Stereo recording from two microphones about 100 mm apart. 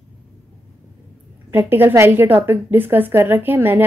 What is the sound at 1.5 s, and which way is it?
A woman's voice, 20° right (ahead or behind).